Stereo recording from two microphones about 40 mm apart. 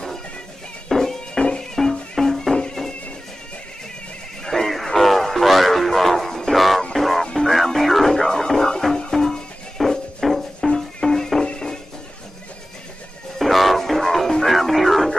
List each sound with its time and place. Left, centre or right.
0.8 s music: centre
4.5 s music: centre
13.4 s music: centre